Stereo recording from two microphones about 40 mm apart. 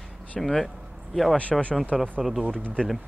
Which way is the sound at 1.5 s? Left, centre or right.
Centre.